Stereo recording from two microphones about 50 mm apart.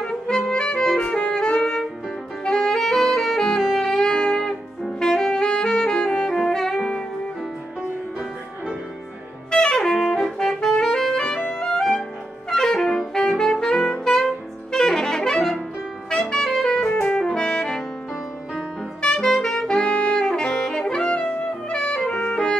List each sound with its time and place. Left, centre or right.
0.0 s music: centre
2.4 s saxophone: centre
9.5 s saxophone: centre
9.9 s music: centre
12.4 s saxophone: centre
16.8 s music: left
17.1 s saxophone: centre
18.9 s music: centre
19.7 s saxophone: centre
22.2 s music: centre